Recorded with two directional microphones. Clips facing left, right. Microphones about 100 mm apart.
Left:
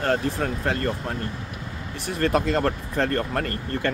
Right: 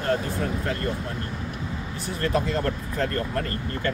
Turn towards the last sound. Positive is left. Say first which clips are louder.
# left 2 dB
turn(degrees=65)  # may be behind; listen again after turning